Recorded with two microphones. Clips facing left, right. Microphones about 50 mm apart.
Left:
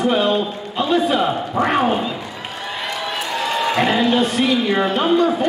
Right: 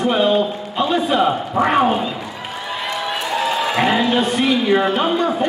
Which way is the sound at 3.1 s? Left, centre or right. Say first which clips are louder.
Right 2 dB; centre.